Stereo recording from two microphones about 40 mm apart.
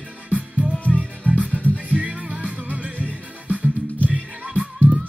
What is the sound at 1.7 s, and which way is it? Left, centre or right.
Music, right.